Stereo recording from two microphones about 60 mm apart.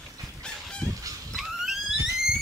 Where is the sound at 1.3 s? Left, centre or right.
Centre.